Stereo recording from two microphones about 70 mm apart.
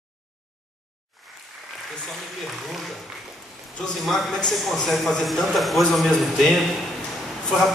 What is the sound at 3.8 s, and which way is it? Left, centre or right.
A man's voice, centre.